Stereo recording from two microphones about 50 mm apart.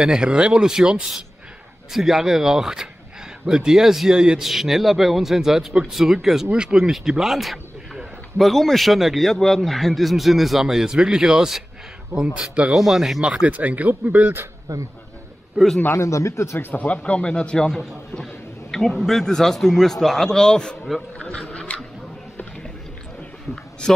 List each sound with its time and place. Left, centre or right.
0.0 s a man's voice: centre
6.9 s a man's voice: centre
12.4 s speech: right
12.7 s a man's voice: centre
13.2 s speech: right
14.7 s speech: right
15.9 s speech: left
16.8 s speech: left
17.6 s a man's voice: centre
21.5 s a sound: left